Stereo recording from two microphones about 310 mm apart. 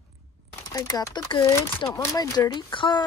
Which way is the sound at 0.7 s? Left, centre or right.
Centre.